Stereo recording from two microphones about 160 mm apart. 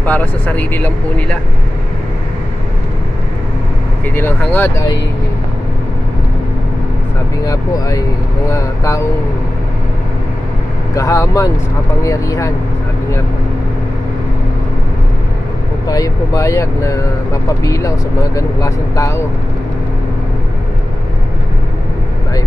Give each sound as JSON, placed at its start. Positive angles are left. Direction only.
{"t": 0.0, "sound": "speech", "side_deg": 10}
{"t": 4.1, "sound": "speech", "side_deg": 10}
{"t": 7.4, "sound": "speech", "side_deg": 20}
{"t": 11.0, "sound": "speech", "side_deg": 20}
{"t": 15.9, "sound": "speech", "side_deg": 20}